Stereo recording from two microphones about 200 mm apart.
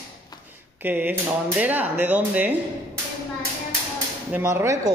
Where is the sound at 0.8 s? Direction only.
10° right (ahead or behind).